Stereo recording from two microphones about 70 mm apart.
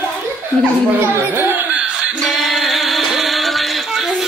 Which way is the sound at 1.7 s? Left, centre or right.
Centre.